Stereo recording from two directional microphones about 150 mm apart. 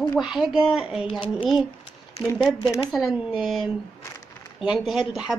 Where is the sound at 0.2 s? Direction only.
5° right (ahead or behind).